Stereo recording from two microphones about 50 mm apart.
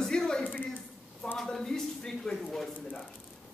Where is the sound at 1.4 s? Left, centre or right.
Centre.